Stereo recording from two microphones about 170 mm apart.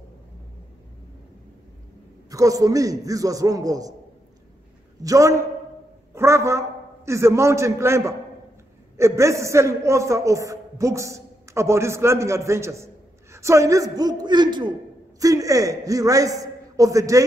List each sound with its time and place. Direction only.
2.3 s a man's voice: 20° right (ahead or behind)
5.0 s a man's voice: 20° right (ahead or behind)